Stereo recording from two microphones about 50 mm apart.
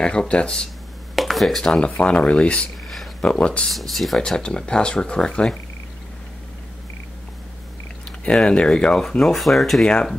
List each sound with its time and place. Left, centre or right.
0.0 s speech: centre
1.1 s a sound: centre
1.6 s speech: centre
3.6 s speech: centre
4.4 s speech: centre
8.3 s speech: centre
9.2 s speech: centre